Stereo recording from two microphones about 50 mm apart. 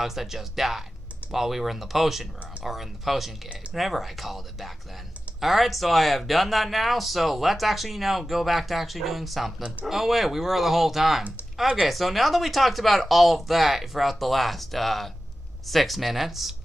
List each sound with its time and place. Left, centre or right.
0.0 s speech: centre